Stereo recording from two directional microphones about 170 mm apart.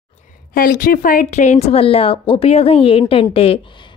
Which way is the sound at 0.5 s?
60° left (ahead or behind).